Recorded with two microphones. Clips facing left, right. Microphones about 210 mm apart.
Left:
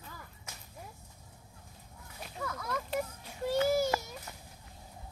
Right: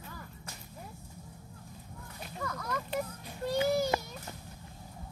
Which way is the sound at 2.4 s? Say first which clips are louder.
Even; 5° left (ahead or behind).